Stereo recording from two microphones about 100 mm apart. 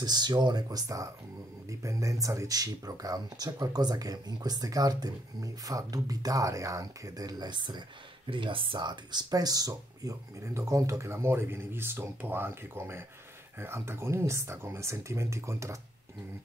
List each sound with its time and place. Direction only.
0.0 s speech: 45° right (ahead or behind)